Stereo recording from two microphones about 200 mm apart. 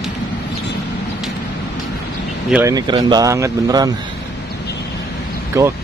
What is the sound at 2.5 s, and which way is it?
Speech, 15° right (ahead or behind).